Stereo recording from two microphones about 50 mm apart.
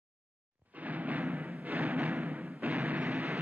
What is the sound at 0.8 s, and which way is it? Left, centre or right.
Music, right.